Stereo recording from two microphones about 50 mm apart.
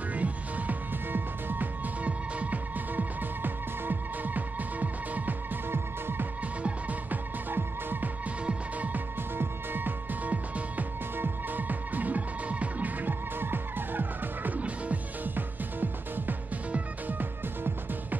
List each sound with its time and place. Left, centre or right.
0.1 s music: right
5.7 s music: right
6.6 s music: right
7.5 s music: right
8.5 s music: right